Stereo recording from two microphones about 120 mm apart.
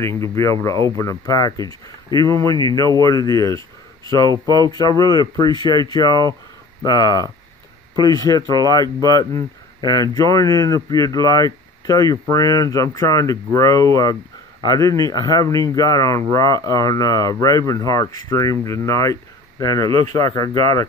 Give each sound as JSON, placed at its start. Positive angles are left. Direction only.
{"t": 0.2, "sound": "speech", "side_deg": 25}